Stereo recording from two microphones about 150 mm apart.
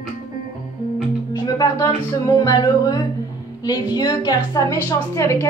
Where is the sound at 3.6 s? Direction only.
25° left (ahead or behind).